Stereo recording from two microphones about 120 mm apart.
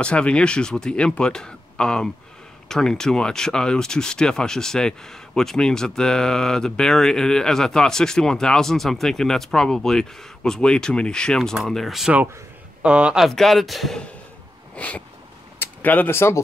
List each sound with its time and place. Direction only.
0.0 s speech: 10° left (ahead or behind)
12.1 s speech: 15° right (ahead or behind)
14.8 s speech: 10° left (ahead or behind)